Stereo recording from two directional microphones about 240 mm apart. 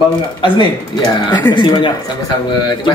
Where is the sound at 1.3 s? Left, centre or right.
Centre.